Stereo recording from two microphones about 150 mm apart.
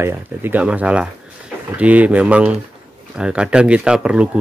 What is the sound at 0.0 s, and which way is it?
Speech, 15° right (ahead or behind).